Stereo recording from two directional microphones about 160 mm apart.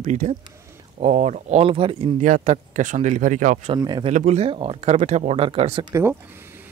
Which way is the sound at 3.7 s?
30° right (ahead or behind).